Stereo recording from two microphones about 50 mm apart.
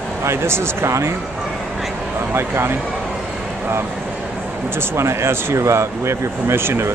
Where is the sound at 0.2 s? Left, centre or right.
Right.